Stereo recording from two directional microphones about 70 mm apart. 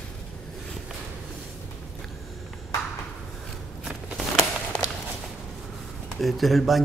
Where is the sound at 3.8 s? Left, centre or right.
Centre.